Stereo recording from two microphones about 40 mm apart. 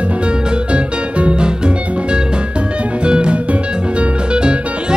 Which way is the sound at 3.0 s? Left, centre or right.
Right.